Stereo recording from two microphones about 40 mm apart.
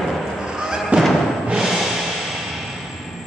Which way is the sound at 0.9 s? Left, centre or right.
Right.